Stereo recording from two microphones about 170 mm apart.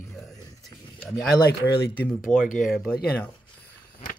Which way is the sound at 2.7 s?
Centre (ahead or behind).